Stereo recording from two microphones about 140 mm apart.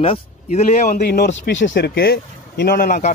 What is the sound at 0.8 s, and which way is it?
Speech, 90° left.